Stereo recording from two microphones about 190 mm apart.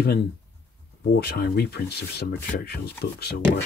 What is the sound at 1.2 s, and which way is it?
Speech, 55° left (ahead or behind).